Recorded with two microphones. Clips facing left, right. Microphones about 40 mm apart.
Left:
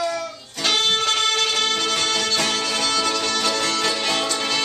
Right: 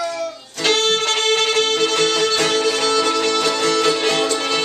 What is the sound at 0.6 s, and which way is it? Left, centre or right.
Music, centre.